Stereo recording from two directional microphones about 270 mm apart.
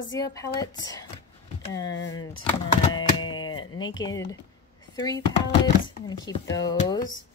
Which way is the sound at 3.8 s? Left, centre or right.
Centre.